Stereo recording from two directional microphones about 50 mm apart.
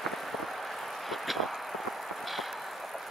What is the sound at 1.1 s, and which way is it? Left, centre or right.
Vehicle, centre.